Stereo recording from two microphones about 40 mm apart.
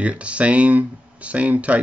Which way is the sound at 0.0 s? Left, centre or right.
Right.